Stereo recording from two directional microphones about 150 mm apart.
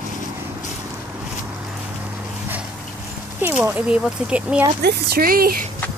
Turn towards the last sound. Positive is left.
turn(degrees=-75)  # may be behind; listen again after turning